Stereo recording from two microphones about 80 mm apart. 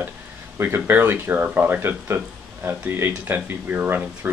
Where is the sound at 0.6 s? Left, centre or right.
Right.